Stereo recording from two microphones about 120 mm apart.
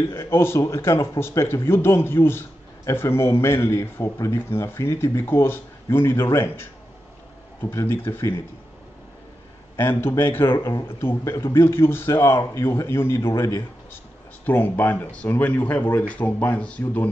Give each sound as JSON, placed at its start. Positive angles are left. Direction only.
{"t": 0.1, "sound": "speech", "side_deg": 20}
{"t": 7.7, "sound": "speech", "side_deg": 20}
{"t": 9.8, "sound": "speech", "side_deg": 20}